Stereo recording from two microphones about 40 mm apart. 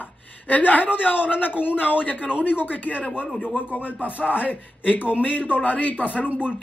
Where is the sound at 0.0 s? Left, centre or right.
Left.